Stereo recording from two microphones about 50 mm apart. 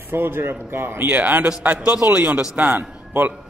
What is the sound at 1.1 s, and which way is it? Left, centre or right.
Speech, right.